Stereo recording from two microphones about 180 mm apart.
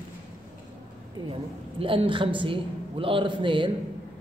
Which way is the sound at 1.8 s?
30° right (ahead or behind).